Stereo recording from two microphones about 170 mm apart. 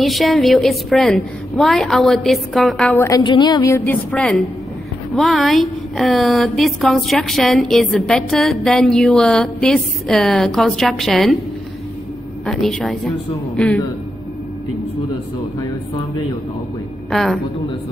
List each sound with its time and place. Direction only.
0.0 s a woman's voice: centre (ahead or behind)
3.0 s a woman's voice: 25° left (ahead or behind); by 11.3 s centre (ahead or behind)
12.4 s a woman's voice: 5° left (ahead or behind)
17.1 s a woman's voice: centre (ahead or behind)